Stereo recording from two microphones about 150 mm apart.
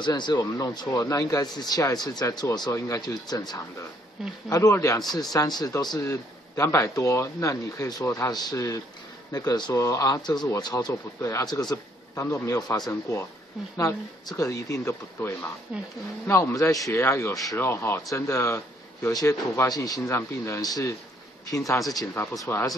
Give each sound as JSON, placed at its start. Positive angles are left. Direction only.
{"t": 0.0, "sound": "speech", "side_deg": 30}
{"t": 15.7, "sound": "speech", "side_deg": -5}
{"t": 16.3, "sound": "speech", "side_deg": 15}
{"t": 21.9, "sound": "speech", "side_deg": 20}